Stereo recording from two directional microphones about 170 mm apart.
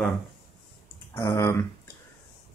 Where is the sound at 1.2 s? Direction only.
20° left (ahead or behind).